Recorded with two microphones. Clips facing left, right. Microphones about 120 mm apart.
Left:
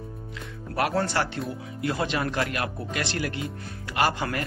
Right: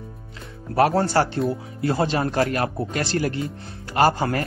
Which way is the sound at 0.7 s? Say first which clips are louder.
Right 7 dB; 35° right (ahead or behind).